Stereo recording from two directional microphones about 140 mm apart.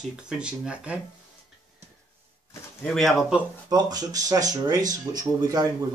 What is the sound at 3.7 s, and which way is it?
Speech, 25° right (ahead or behind).